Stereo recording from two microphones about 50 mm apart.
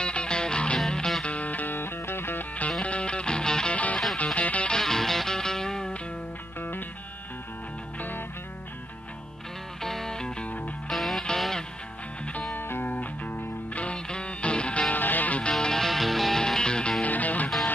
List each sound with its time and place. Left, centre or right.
0.0 s music: centre
1.2 s music: left
2.8 s music: left
3.7 s music: left
4.6 s music: centre
9.8 s music: centre
12.5 s music: left
12.9 s music: left
15.0 s music: left
15.6 s music: centre
17.0 s music: left